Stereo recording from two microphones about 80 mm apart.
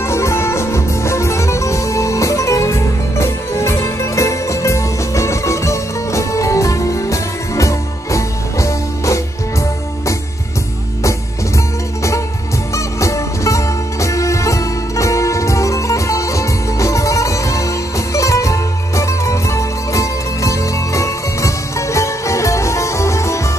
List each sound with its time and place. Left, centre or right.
0.0 s music: left
12.7 s music: left